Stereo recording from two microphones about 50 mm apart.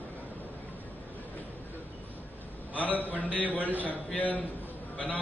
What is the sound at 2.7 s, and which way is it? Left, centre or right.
A man's voice, left.